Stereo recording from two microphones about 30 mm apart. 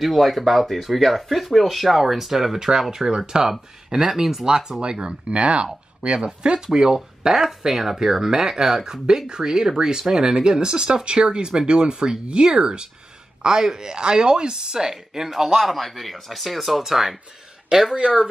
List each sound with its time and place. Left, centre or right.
0.0 s speech: centre
3.1 s speech: right
4.1 s speech: centre
4.5 s speech: right
6.6 s speech: centre
16.8 s speech: centre
17.9 s speech: right